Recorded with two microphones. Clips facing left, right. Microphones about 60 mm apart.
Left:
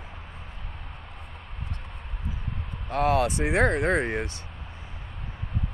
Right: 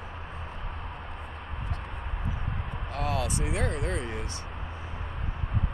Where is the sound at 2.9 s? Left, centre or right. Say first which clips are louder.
Left 8 dB; left.